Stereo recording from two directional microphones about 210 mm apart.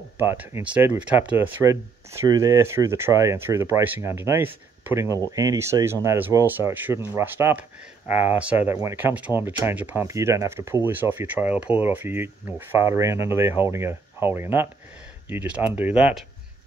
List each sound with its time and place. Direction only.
0.2 s speech: 10° right (ahead or behind)